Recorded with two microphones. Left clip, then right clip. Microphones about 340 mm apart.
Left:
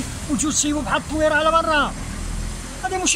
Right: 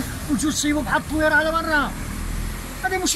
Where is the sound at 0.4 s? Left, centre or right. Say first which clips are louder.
Left 1 dB; centre.